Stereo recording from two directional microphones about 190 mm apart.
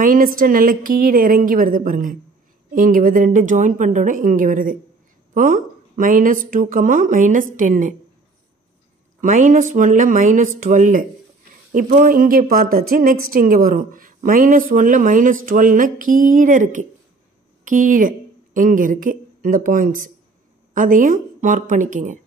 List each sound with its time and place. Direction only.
0.0 s a woman's voice: 45° right (ahead or behind)
9.2 s a woman's voice: 45° right (ahead or behind)